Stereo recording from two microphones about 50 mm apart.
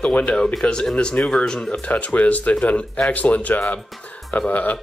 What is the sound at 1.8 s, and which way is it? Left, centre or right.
Speech, left.